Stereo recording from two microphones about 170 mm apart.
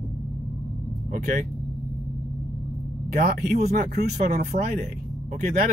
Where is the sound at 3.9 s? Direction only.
65° right (ahead or behind).